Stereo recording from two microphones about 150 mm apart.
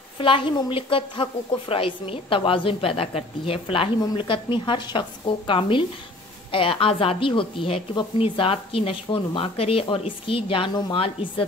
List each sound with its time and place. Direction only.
0.2 s speech: 35° left (ahead or behind)